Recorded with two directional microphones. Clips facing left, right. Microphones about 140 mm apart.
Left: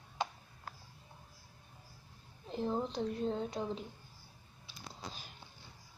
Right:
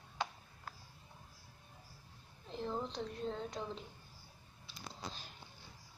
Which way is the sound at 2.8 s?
5° left (ahead or behind).